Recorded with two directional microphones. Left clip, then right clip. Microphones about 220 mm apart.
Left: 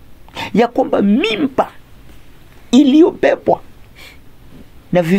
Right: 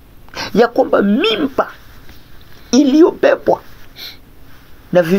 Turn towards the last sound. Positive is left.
turn(degrees=50)  # may be behind; listen again after turning